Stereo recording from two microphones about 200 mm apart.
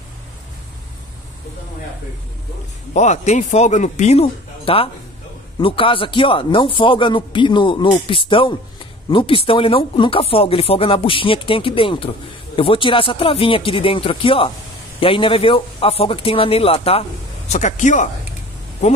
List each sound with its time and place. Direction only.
2.9 s a man's voice: 35° left (ahead or behind)